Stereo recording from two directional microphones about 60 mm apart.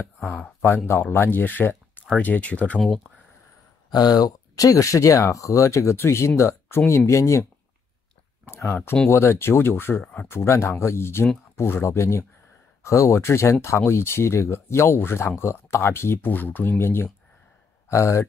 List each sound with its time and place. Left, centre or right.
0.8 s speech: left
3.9 s speech: left
5.9 s speech: left
8.5 s speech: left
10.3 s speech: left
17.8 s speech: left